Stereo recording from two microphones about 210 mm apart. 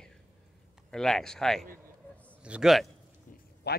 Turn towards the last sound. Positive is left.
turn(degrees=50)  # may be behind; listen again after turning